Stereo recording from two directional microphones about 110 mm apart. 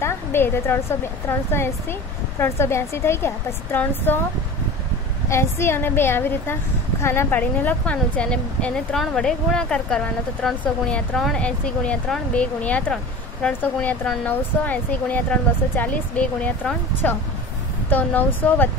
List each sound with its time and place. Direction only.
0.0 s a woman's voice: 20° left (ahead or behind)
5.3 s a woman's voice: 25° left (ahead or behind)